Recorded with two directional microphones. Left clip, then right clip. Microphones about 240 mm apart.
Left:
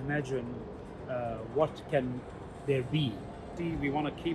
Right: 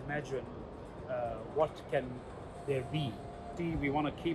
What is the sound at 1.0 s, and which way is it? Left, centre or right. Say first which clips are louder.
Music: left 2 dB; left.